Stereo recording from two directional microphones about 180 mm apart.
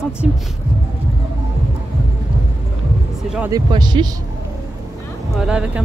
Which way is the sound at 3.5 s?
25° right (ahead or behind).